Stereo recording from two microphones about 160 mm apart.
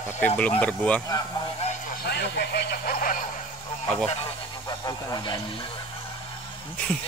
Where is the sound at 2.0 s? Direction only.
90° left; by 3.2 s 60° left (ahead or behind).